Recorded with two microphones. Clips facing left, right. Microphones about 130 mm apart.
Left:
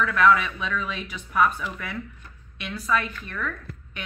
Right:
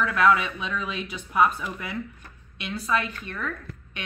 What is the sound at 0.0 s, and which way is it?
A man's voice, 20° right (ahead or behind).